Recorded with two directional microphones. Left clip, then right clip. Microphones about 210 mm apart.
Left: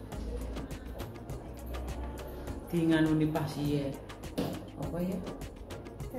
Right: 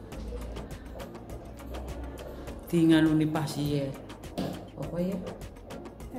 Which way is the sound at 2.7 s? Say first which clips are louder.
Right 5 dB; 50° right (ahead or behind).